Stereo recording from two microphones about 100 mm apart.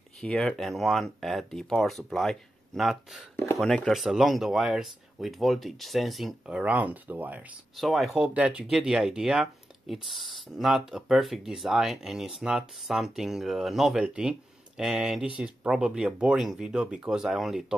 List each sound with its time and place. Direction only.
0.2 s speech: 5° left (ahead or behind)
6.4 s speech: 10° right (ahead or behind)
7.7 s speech: centre (ahead or behind)